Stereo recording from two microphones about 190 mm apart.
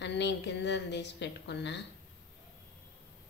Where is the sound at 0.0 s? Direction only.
65° left (ahead or behind).